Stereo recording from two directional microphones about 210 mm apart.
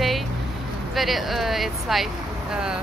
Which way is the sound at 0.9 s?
Centre (ahead or behind).